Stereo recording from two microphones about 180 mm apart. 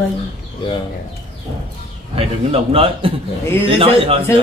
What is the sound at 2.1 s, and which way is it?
Speech, 30° right (ahead or behind).